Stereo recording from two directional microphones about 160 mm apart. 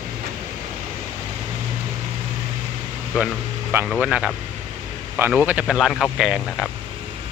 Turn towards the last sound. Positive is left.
turn(degrees=-5)  # may be behind; listen again after turning